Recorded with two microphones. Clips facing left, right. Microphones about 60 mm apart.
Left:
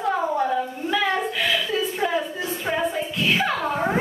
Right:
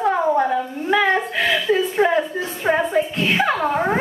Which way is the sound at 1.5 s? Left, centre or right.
Right.